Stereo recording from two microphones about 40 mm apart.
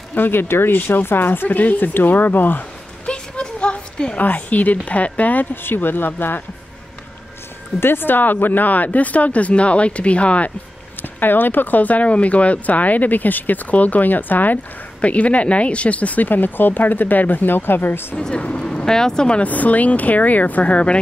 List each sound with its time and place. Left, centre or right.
0.1 s speech: left
3.1 s a sound: left
4.2 s speech: left
5.5 s speech: left
7.8 s speech: left
11.0 s speech: left
15.0 s speech: left
16.3 s speech: left
18.1 s speech: centre
19.4 s speech: left